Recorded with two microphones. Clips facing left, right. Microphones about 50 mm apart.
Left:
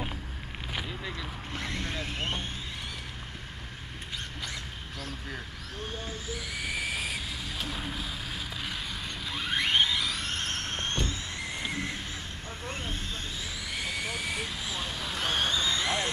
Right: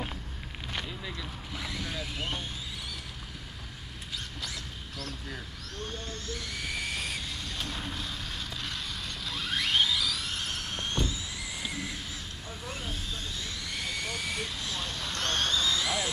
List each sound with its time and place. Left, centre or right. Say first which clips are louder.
0.7 s a sound: left 1 dB; centre
1.6 s vehicle: left 1 dB; centre
2.1 s vehicle: left 2 dB; centre
5.0 s owl: left 1 dB; centre
9.3 s a sound: left 2 dB; centre
10.4 s vehicle: left 2 dB; left
11.1 s vehicle: left 2 dB; left
13.7 s vehicle: left 2 dB; centre